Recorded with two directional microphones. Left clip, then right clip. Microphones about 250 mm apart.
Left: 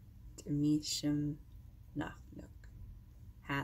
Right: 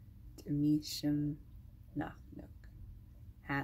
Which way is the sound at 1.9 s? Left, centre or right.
Centre.